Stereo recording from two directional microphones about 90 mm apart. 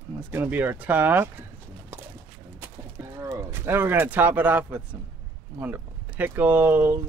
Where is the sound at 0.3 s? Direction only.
25° right (ahead or behind).